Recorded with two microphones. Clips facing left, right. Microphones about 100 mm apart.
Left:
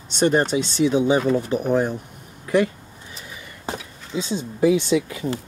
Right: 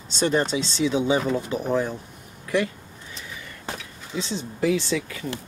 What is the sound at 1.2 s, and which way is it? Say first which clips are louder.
Speech: left 4 dB; 15° right (ahead or behind).